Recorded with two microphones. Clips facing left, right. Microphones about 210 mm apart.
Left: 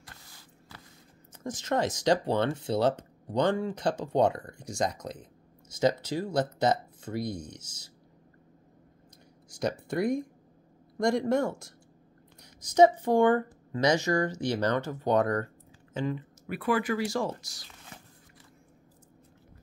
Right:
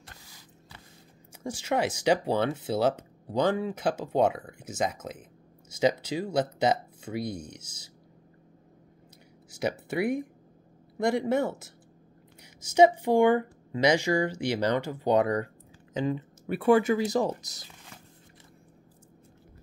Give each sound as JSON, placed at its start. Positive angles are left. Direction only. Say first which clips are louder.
{"t": 1.4, "sound": "speech", "louder": "right 1 dB", "side_deg": -10}
{"t": 9.5, "sound": "speech", "louder": "even", "side_deg": -5}
{"t": 15.9, "sound": "speech", "louder": "right 3 dB", "side_deg": -25}